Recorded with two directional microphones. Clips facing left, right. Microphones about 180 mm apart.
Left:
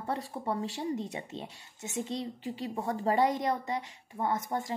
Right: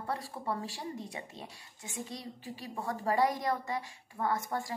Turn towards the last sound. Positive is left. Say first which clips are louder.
# left 2 dB
turn(degrees=20)  # may be behind; listen again after turning